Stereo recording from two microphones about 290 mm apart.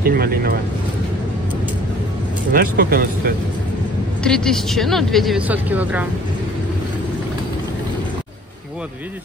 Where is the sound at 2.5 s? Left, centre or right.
Right.